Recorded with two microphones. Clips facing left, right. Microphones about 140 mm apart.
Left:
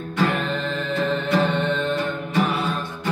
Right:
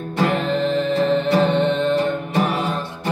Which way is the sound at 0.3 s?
20° right (ahead or behind).